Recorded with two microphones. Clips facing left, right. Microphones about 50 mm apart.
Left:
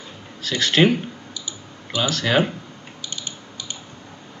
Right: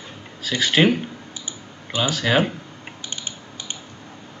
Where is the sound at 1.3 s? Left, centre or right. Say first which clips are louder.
Left 1 dB; right.